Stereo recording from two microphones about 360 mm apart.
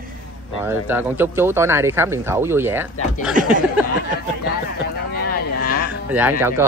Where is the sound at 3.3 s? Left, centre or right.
Right.